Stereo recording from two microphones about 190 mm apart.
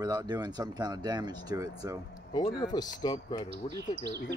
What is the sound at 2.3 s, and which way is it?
Speech, 20° left (ahead or behind).